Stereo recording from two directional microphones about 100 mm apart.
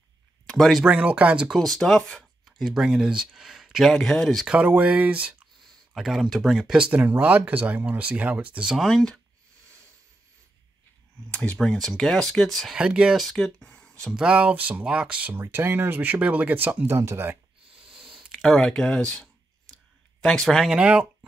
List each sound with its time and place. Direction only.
0.5 s speech: centre (ahead or behind)
0.9 s speech: 15° right (ahead or behind)
1.6 s speech: 5° left (ahead or behind)
4.6 s speech: 15° right (ahead or behind)
5.9 s speech: centre (ahead or behind)
6.9 s speech: 20° right (ahead or behind)
8.7 s speech: 5° left (ahead or behind)
11.3 s speech: 10° left (ahead or behind)
12.7 s speech: 10° right (ahead or behind); by 14.1 s 10° left (ahead or behind)
14.1 s speech: 10° right (ahead or behind)
15.3 s speech: 25° right (ahead or behind)
17.8 s a sound: 5° right (ahead or behind)
20.7 s speech: 10° right (ahead or behind)